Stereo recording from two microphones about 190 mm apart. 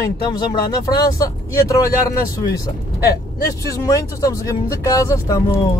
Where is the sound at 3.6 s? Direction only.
15° left (ahead or behind).